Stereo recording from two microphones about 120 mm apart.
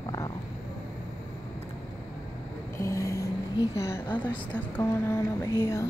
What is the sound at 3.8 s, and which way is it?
A woman's voice, 20° left (ahead or behind).